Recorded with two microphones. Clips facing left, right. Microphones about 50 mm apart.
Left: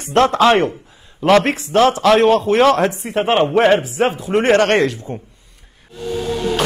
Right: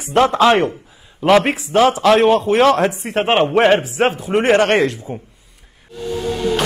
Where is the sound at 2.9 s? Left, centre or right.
Right.